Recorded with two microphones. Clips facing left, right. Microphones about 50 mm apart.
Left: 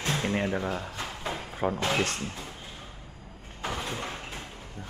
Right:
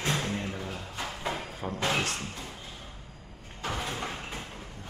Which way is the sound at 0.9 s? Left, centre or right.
Centre.